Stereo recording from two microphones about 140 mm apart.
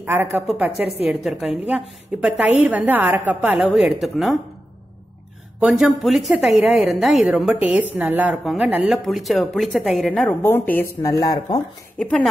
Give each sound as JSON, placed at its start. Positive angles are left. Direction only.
{"t": 0.0, "sound": "a woman's voice", "side_deg": -15}
{"t": 5.6, "sound": "speech", "side_deg": -5}